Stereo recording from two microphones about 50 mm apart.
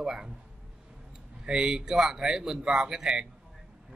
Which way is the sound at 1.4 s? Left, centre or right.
Centre.